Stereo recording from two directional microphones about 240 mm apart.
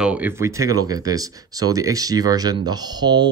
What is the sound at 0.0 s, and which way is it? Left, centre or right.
Speech, centre.